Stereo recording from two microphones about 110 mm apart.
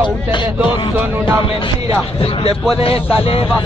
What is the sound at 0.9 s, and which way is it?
Music, 20° right (ahead or behind).